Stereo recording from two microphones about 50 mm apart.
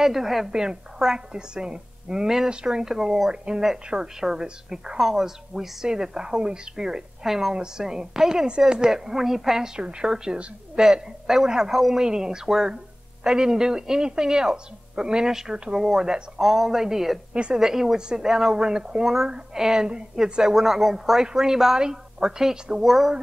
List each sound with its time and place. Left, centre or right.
0.0 s a woman's voice: centre
9.8 s a woman's voice: centre
16.3 s speech: centre
17.3 s a woman's voice: right
17.6 s a woman's voice: centre
20.4 s a woman's voice: centre